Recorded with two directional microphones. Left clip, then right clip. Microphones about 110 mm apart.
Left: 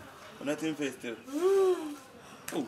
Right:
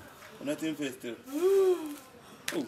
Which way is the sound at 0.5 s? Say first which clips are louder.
Left 1 dB; 15° left (ahead or behind).